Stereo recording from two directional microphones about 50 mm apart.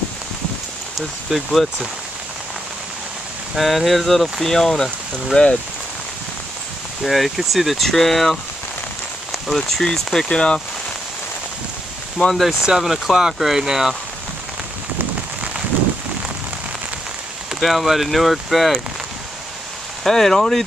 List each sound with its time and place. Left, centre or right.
0.9 s speech: centre
3.5 s speech: centre
7.0 s speech: centre
9.8 s speech: centre
12.4 s speech: centre
17.6 s speech: centre
20.0 s speech: centre